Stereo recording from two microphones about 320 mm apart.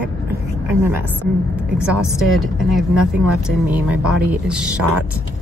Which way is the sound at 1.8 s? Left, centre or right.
Centre.